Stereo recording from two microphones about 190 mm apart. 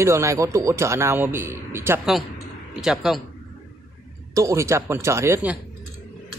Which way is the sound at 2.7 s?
Centre (ahead or behind).